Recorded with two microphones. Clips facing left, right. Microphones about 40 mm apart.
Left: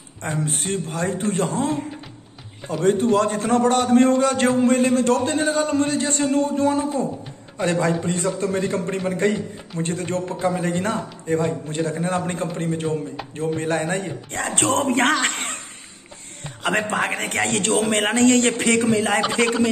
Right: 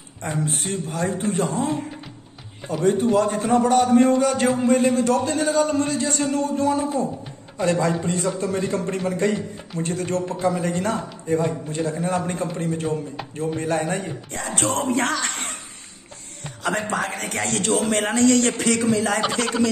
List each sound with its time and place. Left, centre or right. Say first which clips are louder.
0.2 s a man's voice: even; left
2.8 s a man's voice: left 1 dB; left
16.6 s a man's voice: left 2 dB; left
19.3 s speech: left 2 dB; left